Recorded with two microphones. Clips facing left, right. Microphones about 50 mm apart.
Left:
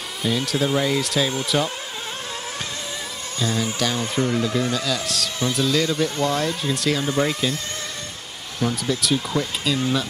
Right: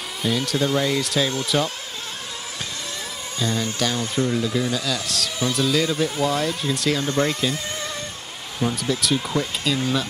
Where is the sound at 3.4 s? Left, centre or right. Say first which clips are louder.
Left 1 dB; centre.